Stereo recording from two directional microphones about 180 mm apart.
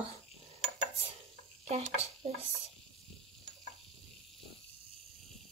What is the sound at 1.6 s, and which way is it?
Speech, 35° right (ahead or behind).